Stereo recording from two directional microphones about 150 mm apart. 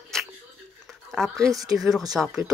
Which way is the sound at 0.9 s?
Centre (ahead or behind).